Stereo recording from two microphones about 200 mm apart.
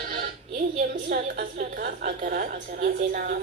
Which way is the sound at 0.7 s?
50° right (ahead or behind).